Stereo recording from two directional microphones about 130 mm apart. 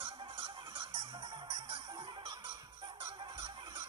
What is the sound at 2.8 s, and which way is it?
Honk, 35° right (ahead or behind).